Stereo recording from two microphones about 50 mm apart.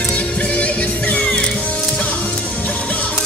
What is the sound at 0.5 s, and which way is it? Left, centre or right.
Music, left.